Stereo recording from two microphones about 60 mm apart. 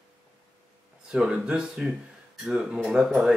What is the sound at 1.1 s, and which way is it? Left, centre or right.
Speech, centre.